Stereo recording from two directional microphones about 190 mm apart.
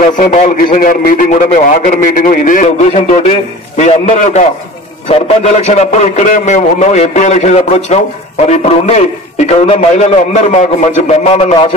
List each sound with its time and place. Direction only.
0.0 s a man's voice: 40° left (ahead or behind)